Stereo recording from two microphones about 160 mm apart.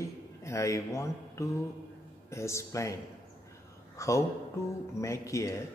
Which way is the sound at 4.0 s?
20° left (ahead or behind).